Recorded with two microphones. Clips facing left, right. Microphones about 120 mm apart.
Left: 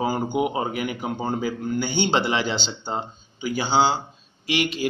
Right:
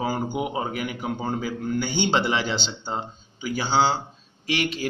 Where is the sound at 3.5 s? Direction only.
15° left (ahead or behind).